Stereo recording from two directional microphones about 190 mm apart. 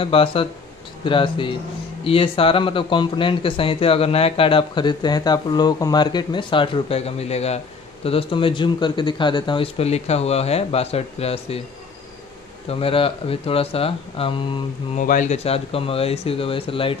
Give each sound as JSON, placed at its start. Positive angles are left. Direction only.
{"t": 0.0, "sound": "speech", "side_deg": 30}
{"t": 12.6, "sound": "speech", "side_deg": 30}
{"t": 15.0, "sound": "speech", "side_deg": 40}